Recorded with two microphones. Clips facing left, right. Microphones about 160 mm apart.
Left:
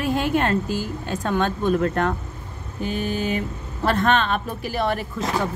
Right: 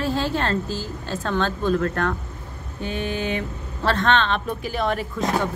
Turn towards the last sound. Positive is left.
turn(degrees=5)  # may be behind; listen again after turning